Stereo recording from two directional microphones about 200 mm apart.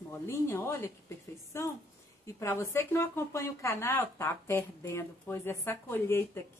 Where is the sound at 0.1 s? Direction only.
10° left (ahead or behind).